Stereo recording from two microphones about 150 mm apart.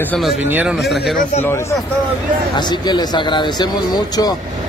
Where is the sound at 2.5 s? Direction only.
30° left (ahead or behind).